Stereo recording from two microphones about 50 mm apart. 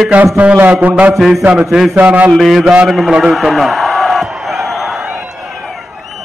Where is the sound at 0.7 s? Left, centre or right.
Right.